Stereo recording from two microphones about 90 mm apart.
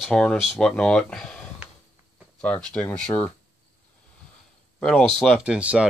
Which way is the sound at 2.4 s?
15° left (ahead or behind).